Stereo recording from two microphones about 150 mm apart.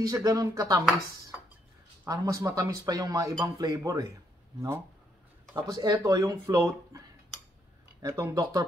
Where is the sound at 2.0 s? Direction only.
25° right (ahead or behind).